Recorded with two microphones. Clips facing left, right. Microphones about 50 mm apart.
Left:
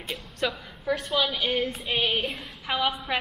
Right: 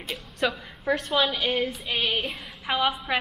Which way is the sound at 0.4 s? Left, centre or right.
Centre.